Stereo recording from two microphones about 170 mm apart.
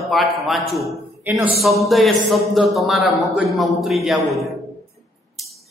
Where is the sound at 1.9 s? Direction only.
Centre (ahead or behind).